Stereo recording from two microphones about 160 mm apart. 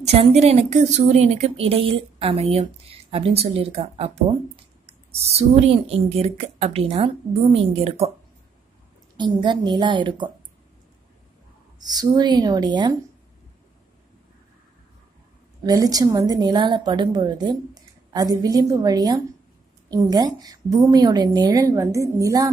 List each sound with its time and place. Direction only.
0.1 s speech: 40° right (ahead or behind)
9.1 s a woman's voice: 30° right (ahead or behind)
11.8 s a woman's voice: 25° right (ahead or behind)
15.6 s a woman's voice: 25° right (ahead or behind)